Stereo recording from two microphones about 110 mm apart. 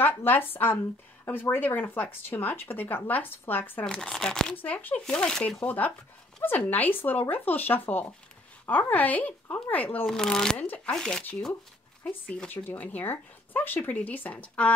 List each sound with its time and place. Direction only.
0.0 s speech: 20° left (ahead or behind)
3.8 s speech: 5° left (ahead or behind)
10.0 s speech: 5° left (ahead or behind)